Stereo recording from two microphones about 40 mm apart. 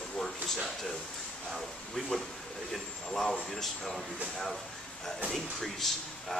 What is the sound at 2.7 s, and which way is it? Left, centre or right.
Speech, centre.